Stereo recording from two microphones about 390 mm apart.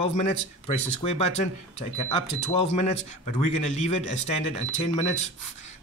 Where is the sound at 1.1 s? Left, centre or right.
Centre.